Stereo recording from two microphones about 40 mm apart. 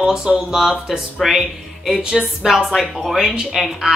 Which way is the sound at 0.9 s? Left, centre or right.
Centre.